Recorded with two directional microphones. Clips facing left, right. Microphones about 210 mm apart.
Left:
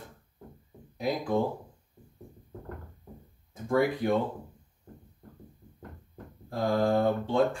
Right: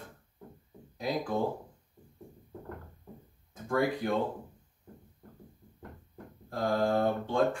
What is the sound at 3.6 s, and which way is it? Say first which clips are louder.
Speech: left 3 dB; 15° left (ahead or behind).